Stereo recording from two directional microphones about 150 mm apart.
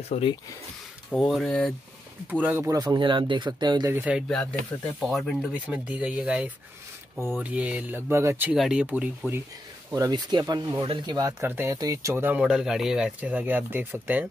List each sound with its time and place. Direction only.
0.1 s speech: 35° left (ahead or behind)
1.1 s speech: centre (ahead or behind)
2.4 s speech: 15° right (ahead or behind)
2.8 s speech: 30° right (ahead or behind)
3.9 s speech: 10° right (ahead or behind)
4.3 s speech: 5° left (ahead or behind); by 8.5 s 15° right (ahead or behind)
8.5 s speech: 5° right (ahead or behind)
9.8 s speech: 20° right (ahead or behind)